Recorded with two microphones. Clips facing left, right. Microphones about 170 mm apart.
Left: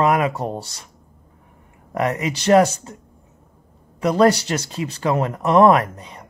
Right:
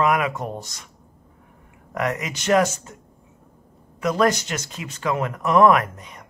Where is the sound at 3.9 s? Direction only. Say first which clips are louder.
Left 4 dB; 30° left (ahead or behind).